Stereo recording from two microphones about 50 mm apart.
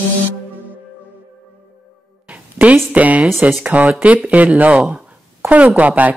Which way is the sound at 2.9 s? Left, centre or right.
Right.